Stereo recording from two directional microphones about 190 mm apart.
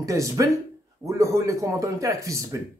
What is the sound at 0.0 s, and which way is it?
Speech, 15° right (ahead or behind).